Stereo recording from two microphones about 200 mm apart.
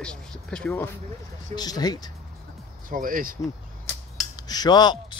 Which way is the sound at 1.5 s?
20° left (ahead or behind).